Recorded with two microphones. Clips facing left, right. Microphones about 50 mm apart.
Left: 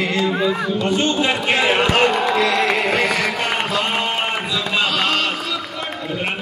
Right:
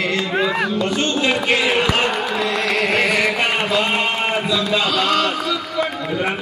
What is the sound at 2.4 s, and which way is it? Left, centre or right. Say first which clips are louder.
Music: left 3 dB; left.